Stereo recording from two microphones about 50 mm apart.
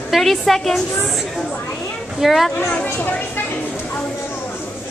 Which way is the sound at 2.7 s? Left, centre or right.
Left.